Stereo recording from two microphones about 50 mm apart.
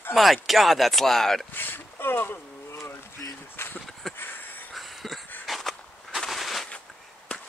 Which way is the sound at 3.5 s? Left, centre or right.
Left.